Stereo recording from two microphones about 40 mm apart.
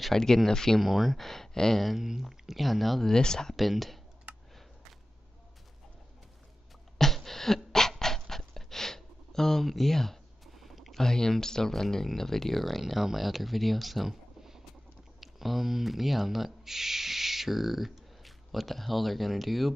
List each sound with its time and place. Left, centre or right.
0.1 s speech: centre
0.7 s speech: centre
1.1 s speech: centre
1.8 s speech: centre
3.1 s speech: centre
3.5 s speech: centre
7.0 s beatboxing: centre
8.0 s a sound: centre
10.5 s a sound: centre
11.0 s speech: centre